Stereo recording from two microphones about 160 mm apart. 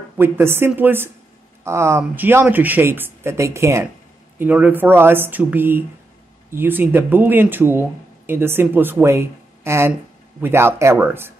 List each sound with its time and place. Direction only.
0.2 s speech: 15° right (ahead or behind)